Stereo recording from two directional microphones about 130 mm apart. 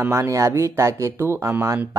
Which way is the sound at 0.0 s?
20° right (ahead or behind).